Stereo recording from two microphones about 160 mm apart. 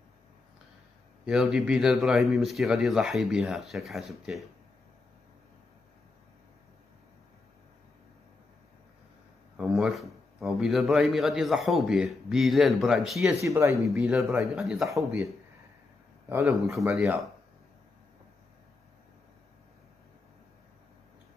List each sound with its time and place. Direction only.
1.2 s a man's voice: 5° right (ahead or behind)
9.6 s a man's voice: centre (ahead or behind)
13.4 s speech: 15° right (ahead or behind)
14.5 s a man's voice: 5° right (ahead or behind)
14.9 s speech: 20° right (ahead or behind)
16.3 s a man's voice: 15° right (ahead or behind)